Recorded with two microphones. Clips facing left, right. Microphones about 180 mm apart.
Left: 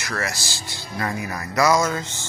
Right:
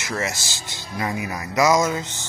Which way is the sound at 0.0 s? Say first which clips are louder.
Right 1 dB; 20° right (ahead or behind).